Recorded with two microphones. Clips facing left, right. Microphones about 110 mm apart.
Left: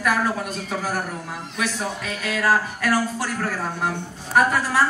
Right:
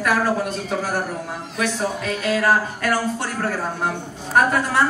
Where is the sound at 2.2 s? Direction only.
25° right (ahead or behind).